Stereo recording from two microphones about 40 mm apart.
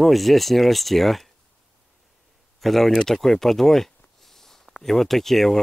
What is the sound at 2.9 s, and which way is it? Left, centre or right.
Speech, centre.